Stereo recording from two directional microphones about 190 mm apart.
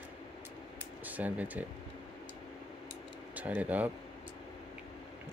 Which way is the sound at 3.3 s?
10° right (ahead or behind).